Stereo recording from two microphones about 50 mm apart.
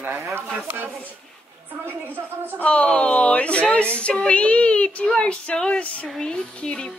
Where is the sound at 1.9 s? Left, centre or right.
Right.